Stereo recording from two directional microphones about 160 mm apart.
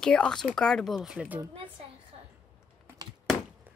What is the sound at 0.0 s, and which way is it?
Speech, 5° left (ahead or behind).